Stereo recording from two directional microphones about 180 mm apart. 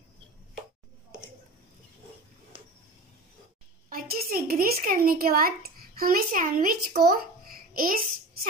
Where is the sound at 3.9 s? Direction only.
55° right (ahead or behind).